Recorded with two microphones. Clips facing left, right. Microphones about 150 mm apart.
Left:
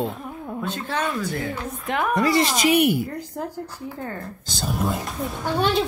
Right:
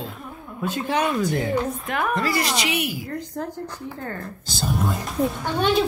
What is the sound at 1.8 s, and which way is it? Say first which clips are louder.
Speech: left 2 dB; 20° left (ahead or behind).